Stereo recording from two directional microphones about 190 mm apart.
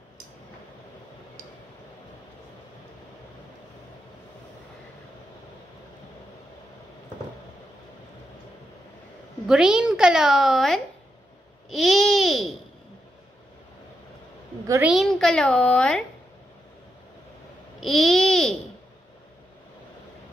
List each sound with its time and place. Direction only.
9.5 s speech: 5° right (ahead or behind)
11.7 s babbling: centre (ahead or behind)
14.9 s speech: centre (ahead or behind)
17.7 s babbling: centre (ahead or behind)